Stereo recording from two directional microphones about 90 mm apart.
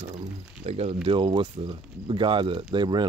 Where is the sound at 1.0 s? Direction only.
75° right (ahead or behind).